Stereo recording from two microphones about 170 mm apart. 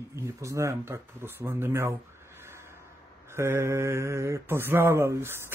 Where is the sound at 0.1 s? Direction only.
15° right (ahead or behind).